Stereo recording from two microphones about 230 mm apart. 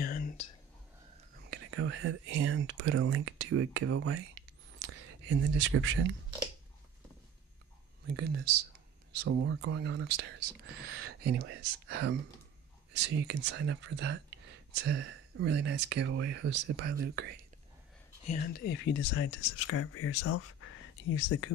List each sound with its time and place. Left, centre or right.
0.0 s whispering: left
1.4 s speech: right
8.1 s speech: right
9.5 s speech: right
18.2 s speech: left